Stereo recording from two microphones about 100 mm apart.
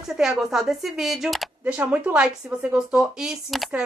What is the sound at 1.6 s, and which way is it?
A woman's voice, 15° right (ahead or behind).